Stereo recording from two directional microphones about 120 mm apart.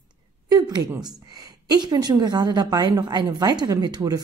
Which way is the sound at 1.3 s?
35° right (ahead or behind).